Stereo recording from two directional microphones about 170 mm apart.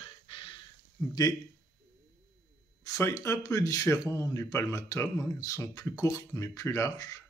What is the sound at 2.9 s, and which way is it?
Speech, 15° left (ahead or behind).